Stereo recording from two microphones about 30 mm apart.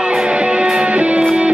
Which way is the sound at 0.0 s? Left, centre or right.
Right.